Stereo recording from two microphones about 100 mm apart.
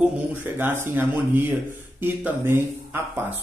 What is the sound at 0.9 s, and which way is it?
Speech, 20° right (ahead or behind).